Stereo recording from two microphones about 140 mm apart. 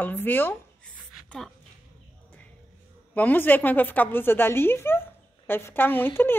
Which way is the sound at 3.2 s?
10° left (ahead or behind).